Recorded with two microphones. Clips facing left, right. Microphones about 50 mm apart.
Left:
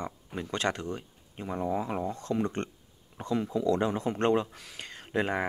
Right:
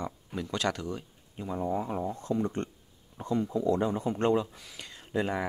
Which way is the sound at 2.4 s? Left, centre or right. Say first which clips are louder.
Left 1 dB; left.